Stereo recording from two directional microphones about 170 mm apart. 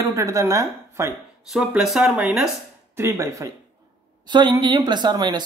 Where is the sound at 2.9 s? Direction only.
20° right (ahead or behind).